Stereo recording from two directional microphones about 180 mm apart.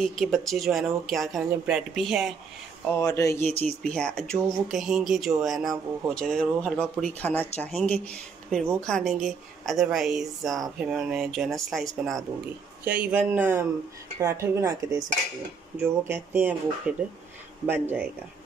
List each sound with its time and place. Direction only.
0.0 s speech: centre (ahead or behind)
3.0 s speech: 20° left (ahead or behind); by 18.0 s 10° right (ahead or behind)